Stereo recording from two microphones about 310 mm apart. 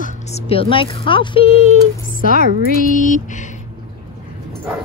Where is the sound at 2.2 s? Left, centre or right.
Left.